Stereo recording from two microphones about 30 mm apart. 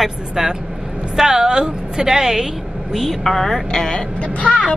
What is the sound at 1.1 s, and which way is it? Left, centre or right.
A woman's voice, centre.